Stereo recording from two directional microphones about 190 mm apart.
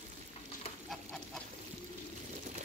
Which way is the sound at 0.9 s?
Centre (ahead or behind).